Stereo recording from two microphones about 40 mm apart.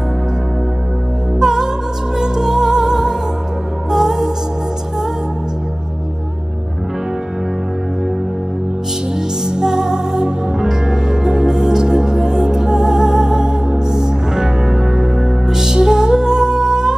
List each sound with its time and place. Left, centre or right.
1.4 s music: centre
9.1 s music: centre